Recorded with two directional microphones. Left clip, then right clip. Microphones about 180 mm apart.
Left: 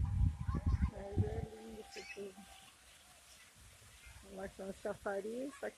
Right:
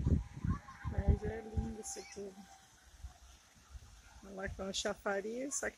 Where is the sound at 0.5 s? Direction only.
55° left (ahead or behind).